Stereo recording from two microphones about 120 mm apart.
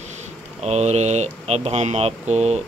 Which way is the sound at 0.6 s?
65° right (ahead or behind).